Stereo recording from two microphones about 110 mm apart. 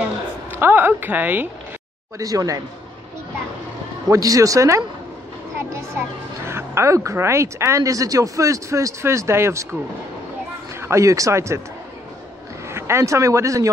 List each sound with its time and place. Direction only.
0.5 s speech: 20° right (ahead or behind)
2.1 s speech: 30° right (ahead or behind)
4.1 s a child's voice: 30° right (ahead or behind)
10.8 s a child's voice: 25° right (ahead or behind)
12.6 s speech: 25° right (ahead or behind)